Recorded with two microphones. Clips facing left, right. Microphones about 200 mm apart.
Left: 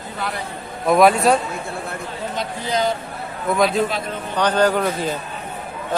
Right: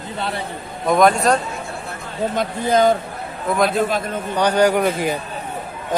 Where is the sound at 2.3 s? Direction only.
50° right (ahead or behind).